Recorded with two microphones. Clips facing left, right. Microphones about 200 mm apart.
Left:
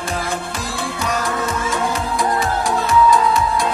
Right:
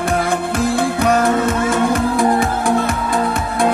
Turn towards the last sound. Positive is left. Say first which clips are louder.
# even
turn(degrees=-55)  # may be behind; listen again after turning